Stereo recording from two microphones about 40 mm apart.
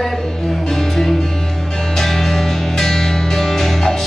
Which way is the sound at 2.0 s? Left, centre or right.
Centre.